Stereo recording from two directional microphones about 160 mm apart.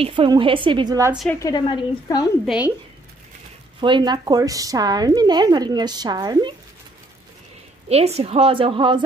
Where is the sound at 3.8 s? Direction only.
30° right (ahead or behind).